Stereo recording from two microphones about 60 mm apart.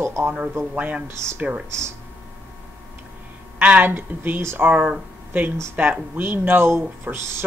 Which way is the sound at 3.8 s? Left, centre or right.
Right.